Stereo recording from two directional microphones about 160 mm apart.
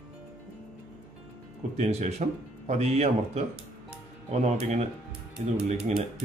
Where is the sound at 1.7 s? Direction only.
45° right (ahead or behind).